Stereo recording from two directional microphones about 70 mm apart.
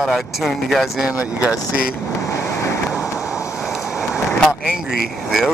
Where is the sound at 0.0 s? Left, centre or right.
Centre.